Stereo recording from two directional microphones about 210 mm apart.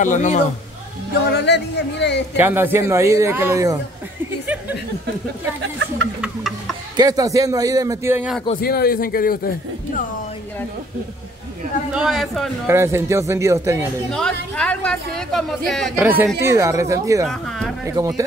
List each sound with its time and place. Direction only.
0.0 s a man's voice: 35° left (ahead or behind)
1.3 s speech: 55° left (ahead or behind)
2.3 s a man's voice: 10° right (ahead or behind)
5.6 s speech: 65° right (ahead or behind)
7.0 s a man's voice: 15° right (ahead or behind)
8.5 s a man's voice: 45° left (ahead or behind)
11.9 s speech: centre (ahead or behind)
12.6 s a man's voice: 10° right (ahead or behind)
14.1 s speech: 5° left (ahead or behind)
16.0 s a man's voice: 10° right (ahead or behind)
17.3 s speech: centre (ahead or behind)
17.8 s a man's voice: 15° right (ahead or behind)